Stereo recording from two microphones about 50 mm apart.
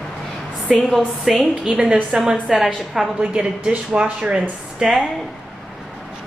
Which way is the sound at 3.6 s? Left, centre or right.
Centre.